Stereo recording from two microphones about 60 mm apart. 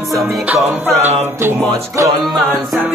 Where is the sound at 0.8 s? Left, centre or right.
Right.